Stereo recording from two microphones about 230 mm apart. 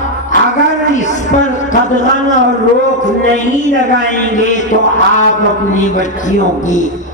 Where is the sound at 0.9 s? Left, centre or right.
Left.